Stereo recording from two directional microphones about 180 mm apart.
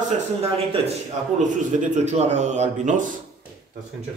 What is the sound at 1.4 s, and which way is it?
A man's voice, 45° right (ahead or behind).